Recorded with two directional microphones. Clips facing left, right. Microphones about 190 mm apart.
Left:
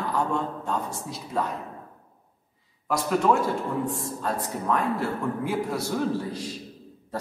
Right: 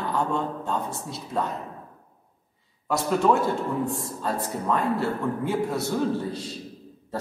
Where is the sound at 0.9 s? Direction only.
25° right (ahead or behind).